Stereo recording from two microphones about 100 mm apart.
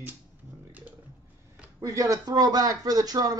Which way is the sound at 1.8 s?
35° right (ahead or behind).